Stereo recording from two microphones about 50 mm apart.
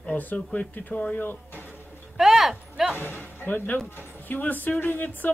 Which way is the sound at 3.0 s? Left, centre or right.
Left.